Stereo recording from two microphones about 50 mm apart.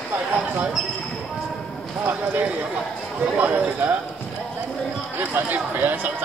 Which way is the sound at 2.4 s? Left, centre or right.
Right.